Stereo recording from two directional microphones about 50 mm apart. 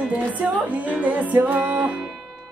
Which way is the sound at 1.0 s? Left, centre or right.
Right.